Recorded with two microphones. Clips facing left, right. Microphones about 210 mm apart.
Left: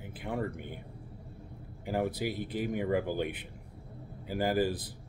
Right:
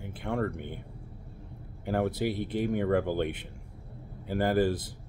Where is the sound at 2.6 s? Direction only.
10° left (ahead or behind).